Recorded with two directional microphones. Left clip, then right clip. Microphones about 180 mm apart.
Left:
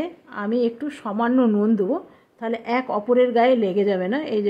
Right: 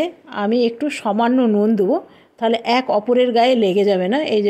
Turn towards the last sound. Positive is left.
turn(degrees=-15)  # may be behind; listen again after turning